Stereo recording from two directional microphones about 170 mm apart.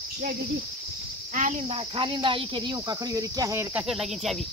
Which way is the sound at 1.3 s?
45° right (ahead or behind).